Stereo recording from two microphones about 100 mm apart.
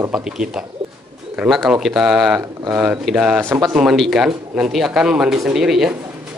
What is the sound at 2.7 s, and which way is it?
Speech, 15° right (ahead or behind).